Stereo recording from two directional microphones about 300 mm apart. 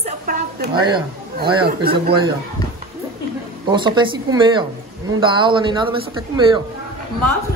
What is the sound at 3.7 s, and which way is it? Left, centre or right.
A woman's voice, centre.